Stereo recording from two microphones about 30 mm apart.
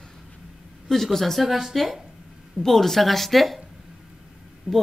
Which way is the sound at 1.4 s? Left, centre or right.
Centre.